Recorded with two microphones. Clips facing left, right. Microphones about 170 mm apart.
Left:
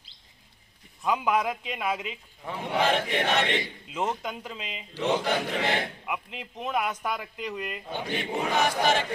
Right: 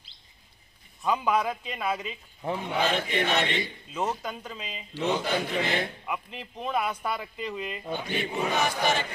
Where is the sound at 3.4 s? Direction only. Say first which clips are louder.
Left 1 dB; 85° left.